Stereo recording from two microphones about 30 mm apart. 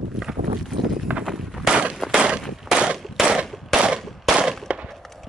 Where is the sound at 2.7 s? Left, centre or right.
Right.